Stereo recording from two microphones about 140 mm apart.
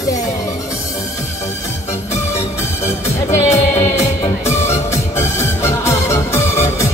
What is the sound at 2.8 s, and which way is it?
Music, 20° left (ahead or behind).